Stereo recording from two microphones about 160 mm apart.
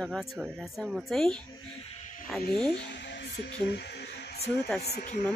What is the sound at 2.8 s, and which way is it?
Music, 90° left.